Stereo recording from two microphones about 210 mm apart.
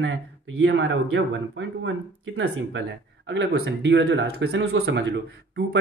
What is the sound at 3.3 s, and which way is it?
Speech, 60° right (ahead or behind).